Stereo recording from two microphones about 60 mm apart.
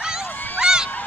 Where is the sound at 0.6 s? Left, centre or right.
Centre.